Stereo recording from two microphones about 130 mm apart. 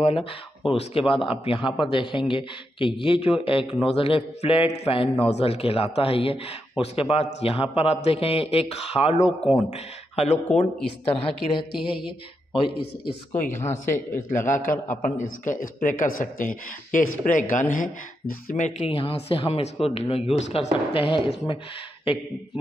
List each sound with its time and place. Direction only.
0.0 s speech: 45° left (ahead or behind)
11.1 s speech: 45° left (ahead or behind)
13.5 s speech: 20° left (ahead or behind)
14.4 s a man's voice: 80° left
18.5 s speech: 65° left (ahead or behind)
18.9 s speech: 50° left (ahead or behind)
20.9 s speech: 45° left (ahead or behind)